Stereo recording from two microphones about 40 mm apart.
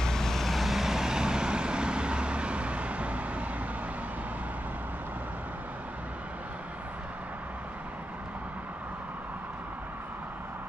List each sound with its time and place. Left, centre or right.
0.0 s vehicle: centre; by 3.4 s right